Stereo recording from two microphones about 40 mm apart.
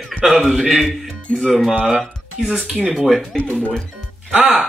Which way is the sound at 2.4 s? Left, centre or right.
Centre.